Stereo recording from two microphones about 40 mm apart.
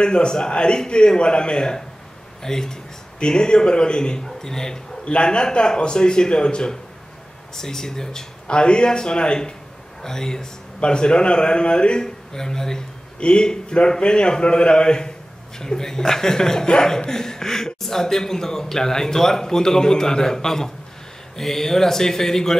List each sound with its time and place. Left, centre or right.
0.0 s a man's voice: left
5.0 s a man's voice: left; by 22.6 s centre